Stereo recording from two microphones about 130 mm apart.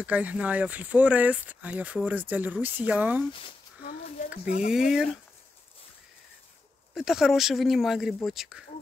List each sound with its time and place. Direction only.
0.0 s speech: 10° right (ahead or behind)
4.6 s speech: 5° right (ahead or behind)
6.9 s speech: centre (ahead or behind)